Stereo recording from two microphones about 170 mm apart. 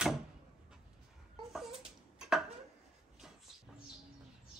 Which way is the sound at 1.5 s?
Centre (ahead or behind).